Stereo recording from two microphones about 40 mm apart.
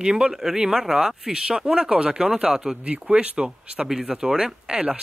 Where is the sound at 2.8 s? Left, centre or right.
Right.